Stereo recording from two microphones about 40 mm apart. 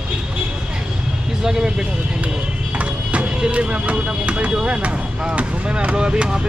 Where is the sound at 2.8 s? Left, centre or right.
Right.